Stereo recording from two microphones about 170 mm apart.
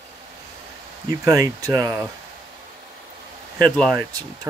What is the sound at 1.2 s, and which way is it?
Speech, 20° right (ahead or behind).